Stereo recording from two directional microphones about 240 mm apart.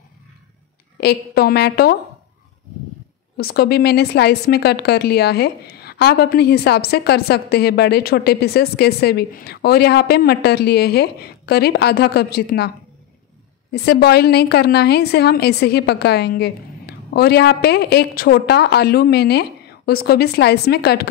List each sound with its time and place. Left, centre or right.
1.0 s a woman's voice: left
3.3 s a woman's voice: left